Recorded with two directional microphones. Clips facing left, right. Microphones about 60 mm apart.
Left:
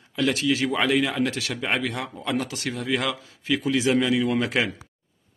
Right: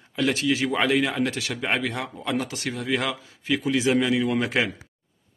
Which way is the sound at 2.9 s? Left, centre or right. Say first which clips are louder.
Even; centre.